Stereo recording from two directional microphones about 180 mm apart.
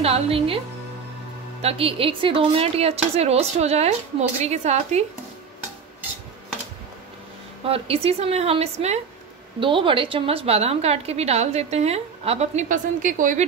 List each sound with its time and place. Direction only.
0.0 s a woman's voice: 35° right (ahead or behind)
1.6 s a woman's voice: 35° right (ahead or behind)
7.6 s a woman's voice: 30° right (ahead or behind)